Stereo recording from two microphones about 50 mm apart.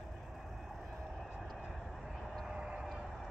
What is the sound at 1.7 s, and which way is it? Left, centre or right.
Vehicle, centre.